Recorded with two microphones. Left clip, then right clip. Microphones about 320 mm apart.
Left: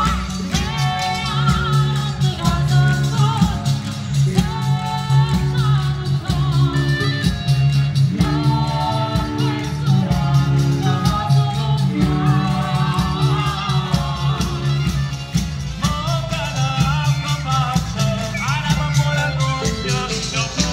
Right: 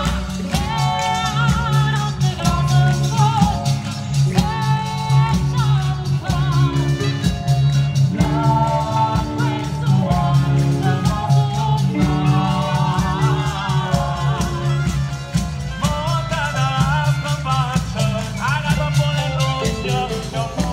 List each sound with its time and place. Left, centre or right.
2.4 s music: centre
9.8 s music: right
16.7 s music: right
18.5 s music: right